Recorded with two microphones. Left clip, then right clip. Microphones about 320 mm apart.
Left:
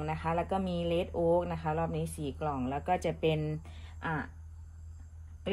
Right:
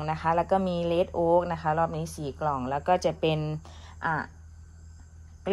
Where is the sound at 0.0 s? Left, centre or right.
Right.